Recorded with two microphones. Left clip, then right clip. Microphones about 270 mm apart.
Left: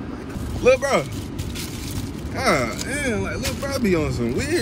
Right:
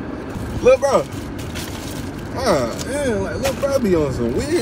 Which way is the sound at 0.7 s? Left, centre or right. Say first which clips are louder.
Right 4 dB; centre.